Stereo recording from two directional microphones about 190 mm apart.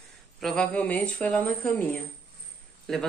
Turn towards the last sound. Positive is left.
turn(degrees=0)  # may be behind; listen again after turning